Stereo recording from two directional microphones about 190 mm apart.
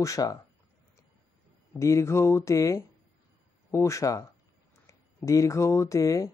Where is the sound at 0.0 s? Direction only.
15° left (ahead or behind).